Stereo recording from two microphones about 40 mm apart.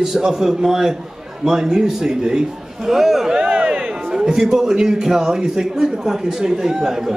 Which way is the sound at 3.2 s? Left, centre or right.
Right.